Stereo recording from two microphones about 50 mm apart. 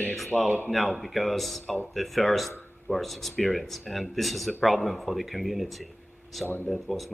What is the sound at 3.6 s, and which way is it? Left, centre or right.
A man's voice, centre.